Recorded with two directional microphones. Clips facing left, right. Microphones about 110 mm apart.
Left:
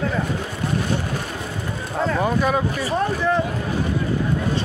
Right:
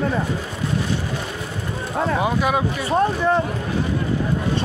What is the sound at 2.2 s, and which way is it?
Speech, 10° right (ahead or behind).